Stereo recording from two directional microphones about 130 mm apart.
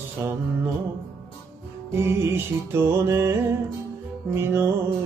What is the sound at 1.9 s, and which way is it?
Music, 20° right (ahead or behind).